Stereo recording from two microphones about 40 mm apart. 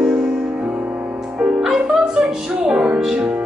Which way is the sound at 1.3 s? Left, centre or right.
Right.